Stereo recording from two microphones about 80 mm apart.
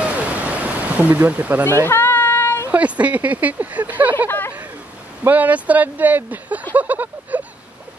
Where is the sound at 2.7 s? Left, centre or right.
Centre.